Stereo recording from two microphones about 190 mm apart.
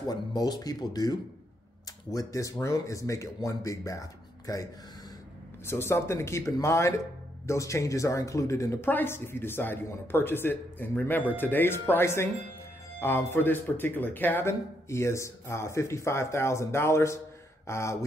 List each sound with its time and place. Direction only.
0.1 s speech: 20° left (ahead or behind)
5.7 s speech: 15° left (ahead or behind)